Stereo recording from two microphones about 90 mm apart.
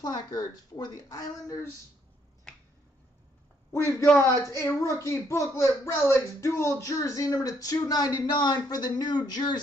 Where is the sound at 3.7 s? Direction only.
35° left (ahead or behind).